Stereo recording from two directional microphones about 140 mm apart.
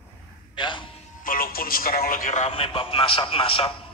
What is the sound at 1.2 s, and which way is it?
A man's voice, 85° left.